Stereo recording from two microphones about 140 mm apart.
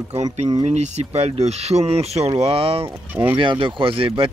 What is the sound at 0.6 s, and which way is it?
Speech, 55° right (ahead or behind).